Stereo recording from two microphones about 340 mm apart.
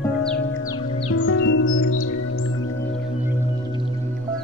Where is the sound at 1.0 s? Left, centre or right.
Left.